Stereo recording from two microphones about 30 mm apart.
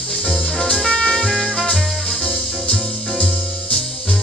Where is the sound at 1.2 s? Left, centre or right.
Centre.